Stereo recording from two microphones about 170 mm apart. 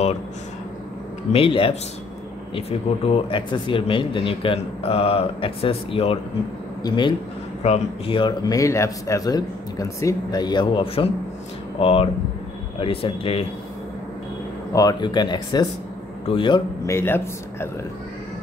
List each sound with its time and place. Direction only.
1.3 s speech: 30° left (ahead or behind)
3.1 s speech: 30° left (ahead or behind)
14.7 s speech: 20° left (ahead or behind)
16.8 s speech: 15° left (ahead or behind)